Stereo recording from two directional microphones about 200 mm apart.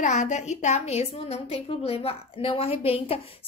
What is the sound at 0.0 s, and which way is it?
A woman's voice, 35° left (ahead or behind).